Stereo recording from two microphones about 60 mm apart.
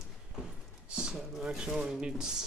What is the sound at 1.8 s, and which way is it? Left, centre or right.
Speech, centre.